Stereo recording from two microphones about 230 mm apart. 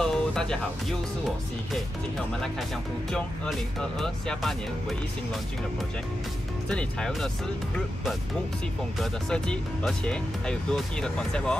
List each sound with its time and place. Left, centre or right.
0.0 s music: centre
4.0 s speech: centre
6.7 s speech: centre
9.0 s speech: centre